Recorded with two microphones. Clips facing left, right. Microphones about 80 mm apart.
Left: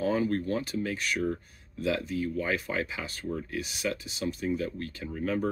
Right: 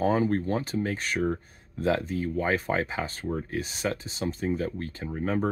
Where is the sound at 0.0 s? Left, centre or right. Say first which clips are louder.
Right 3 dB; right.